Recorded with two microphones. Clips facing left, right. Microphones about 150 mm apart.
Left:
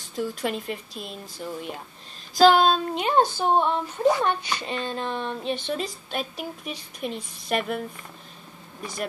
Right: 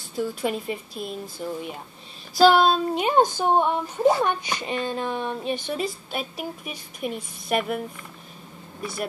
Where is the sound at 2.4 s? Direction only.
5° right (ahead or behind).